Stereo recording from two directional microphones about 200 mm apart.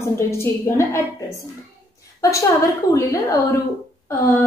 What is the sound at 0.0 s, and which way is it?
A woman's voice, 15° left (ahead or behind).